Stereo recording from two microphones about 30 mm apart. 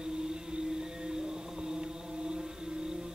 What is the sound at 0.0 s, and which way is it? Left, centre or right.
Whale vocalization, right.